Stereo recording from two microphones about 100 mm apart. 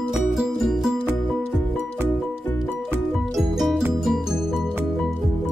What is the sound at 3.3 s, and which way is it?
Music, centre (ahead or behind).